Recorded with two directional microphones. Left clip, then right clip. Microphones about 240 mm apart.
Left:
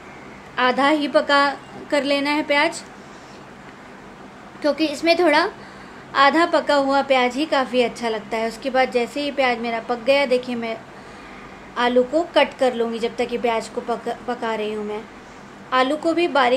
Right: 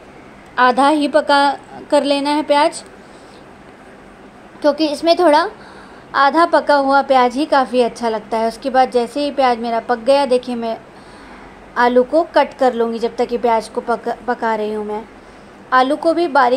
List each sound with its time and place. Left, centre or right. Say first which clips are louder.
0.6 s a woman's voice: right 6 dB; centre
4.6 s a woman's voice: right 5 dB; centre
15.7 s a woman's voice: right 5 dB; centre